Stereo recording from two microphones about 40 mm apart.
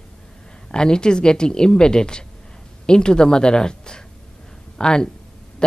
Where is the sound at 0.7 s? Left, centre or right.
Centre.